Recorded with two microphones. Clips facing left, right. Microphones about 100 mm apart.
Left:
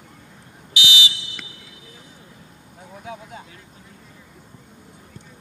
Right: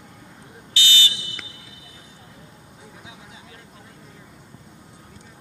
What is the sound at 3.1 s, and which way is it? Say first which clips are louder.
Vehicle: left 10 dB; 55° left (ahead or behind).